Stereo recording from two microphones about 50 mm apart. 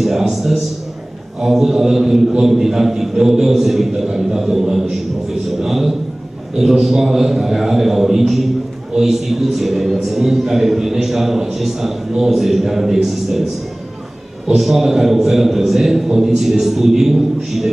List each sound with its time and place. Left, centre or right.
0.0 s a man's voice: centre
14.5 s a man's voice: centre